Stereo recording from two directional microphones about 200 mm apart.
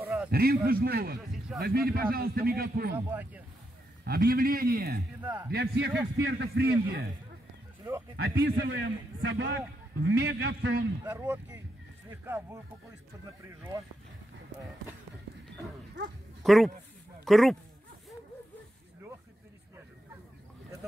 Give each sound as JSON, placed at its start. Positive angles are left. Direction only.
{"t": 0.0, "sound": "a sound", "side_deg": -5}
{"t": 0.3, "sound": "a man's voice", "side_deg": -50}
{"t": 2.9, "sound": "speech", "side_deg": -10}
{"t": 4.0, "sound": "a man's voice", "side_deg": -50}
{"t": 5.2, "sound": "speech", "side_deg": -10}
{"t": 5.5, "sound": "a man's voice", "side_deg": -55}
{"t": 8.2, "sound": "a man's voice", "side_deg": -55}
{"t": 8.5, "sound": "a man's voice", "side_deg": -70}
{"t": 11.1, "sound": "speech", "side_deg": -10}
{"t": 16.4, "sound": "a man's voice", "side_deg": 0}